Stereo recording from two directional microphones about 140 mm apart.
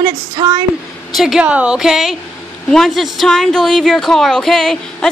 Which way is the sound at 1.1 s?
5° right (ahead or behind).